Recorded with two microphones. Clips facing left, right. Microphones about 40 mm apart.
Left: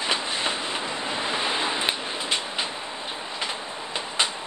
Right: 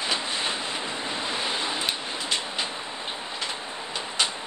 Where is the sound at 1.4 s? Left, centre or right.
Left.